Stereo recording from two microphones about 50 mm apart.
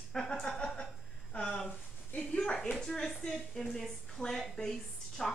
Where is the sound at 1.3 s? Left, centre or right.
Left.